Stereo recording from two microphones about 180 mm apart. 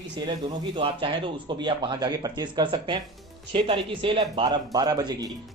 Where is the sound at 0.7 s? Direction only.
30° right (ahead or behind).